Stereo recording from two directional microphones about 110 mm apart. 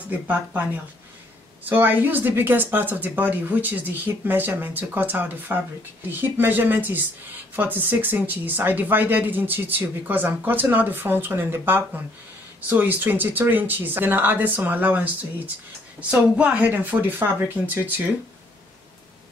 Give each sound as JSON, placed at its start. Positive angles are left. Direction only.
{"t": 0.3, "sound": "speech", "side_deg": -15}